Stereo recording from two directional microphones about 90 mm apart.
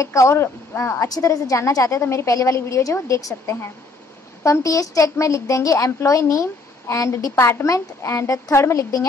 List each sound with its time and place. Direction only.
0.0 s speech: 35° left (ahead or behind)